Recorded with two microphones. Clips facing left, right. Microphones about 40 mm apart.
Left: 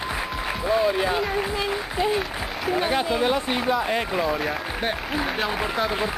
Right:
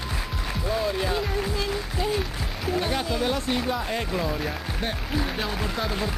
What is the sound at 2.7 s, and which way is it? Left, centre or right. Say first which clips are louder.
Speech: left 4 dB; left.